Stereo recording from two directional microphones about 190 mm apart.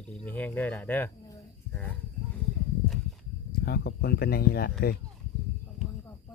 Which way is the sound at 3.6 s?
55° left (ahead or behind).